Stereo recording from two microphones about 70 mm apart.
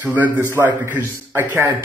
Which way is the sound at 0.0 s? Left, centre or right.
Right.